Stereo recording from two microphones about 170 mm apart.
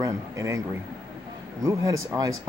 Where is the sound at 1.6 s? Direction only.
20° right (ahead or behind).